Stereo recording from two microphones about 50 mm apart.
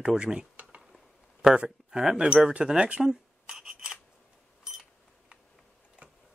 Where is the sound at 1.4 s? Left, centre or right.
Centre.